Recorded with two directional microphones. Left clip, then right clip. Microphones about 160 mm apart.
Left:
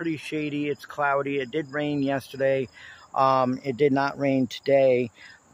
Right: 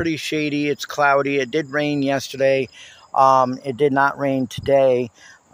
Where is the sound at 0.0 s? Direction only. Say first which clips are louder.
Right 7 dB; 20° right (ahead or behind).